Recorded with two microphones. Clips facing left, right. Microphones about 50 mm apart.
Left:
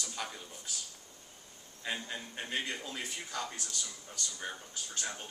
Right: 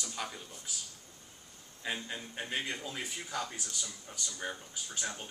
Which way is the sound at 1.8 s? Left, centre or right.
Centre.